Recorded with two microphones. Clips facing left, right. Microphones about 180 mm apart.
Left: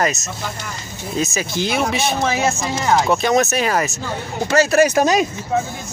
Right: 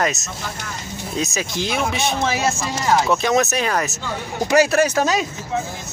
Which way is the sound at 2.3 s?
15° left (ahead or behind).